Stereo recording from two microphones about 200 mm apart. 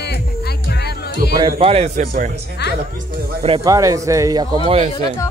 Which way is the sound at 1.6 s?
30° right (ahead or behind).